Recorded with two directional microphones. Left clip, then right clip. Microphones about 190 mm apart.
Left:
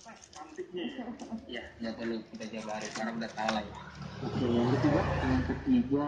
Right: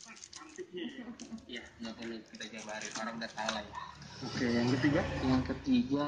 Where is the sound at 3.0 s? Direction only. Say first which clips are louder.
Left 5 dB; 15° right (ahead or behind).